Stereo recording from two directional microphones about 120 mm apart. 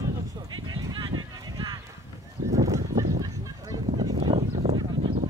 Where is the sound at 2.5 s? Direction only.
30° right (ahead or behind).